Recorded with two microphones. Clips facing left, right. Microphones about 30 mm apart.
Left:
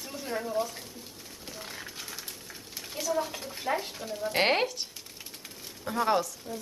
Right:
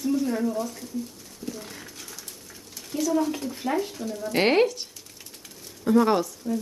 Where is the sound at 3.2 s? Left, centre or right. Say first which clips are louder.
Right 6 dB; centre.